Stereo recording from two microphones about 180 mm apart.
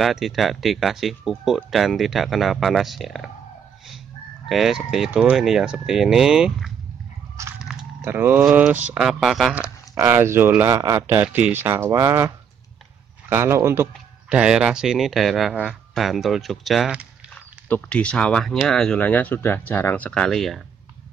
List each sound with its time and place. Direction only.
0.0 s speech: centre (ahead or behind)
4.5 s speech: centre (ahead or behind)
7.3 s biting: 15° right (ahead or behind)
8.0 s speech: 10° right (ahead or behind)
13.3 s speech: 15° right (ahead or behind); by 20.6 s centre (ahead or behind)